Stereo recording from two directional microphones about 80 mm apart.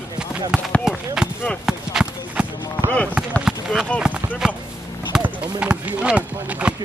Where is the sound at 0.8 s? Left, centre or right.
Centre.